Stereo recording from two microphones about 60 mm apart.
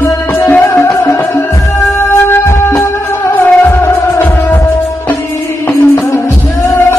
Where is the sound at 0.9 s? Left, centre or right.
Left.